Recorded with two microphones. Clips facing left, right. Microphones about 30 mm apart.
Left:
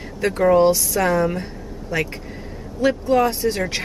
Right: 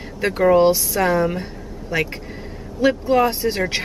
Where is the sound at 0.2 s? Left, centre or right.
Centre.